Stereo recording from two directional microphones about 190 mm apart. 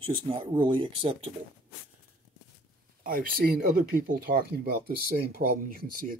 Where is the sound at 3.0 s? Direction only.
50° right (ahead or behind).